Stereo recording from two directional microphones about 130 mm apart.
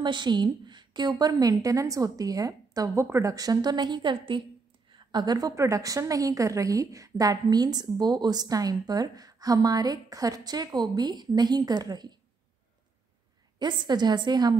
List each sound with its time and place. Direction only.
0.0 s a woman's voice: 35° right (ahead or behind)
13.6 s a woman's voice: 35° right (ahead or behind)